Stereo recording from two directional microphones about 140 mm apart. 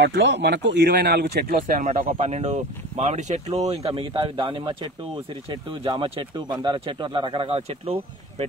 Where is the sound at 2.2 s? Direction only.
50° right (ahead or behind).